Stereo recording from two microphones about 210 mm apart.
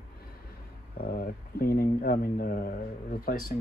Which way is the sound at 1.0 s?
45° left (ahead or behind).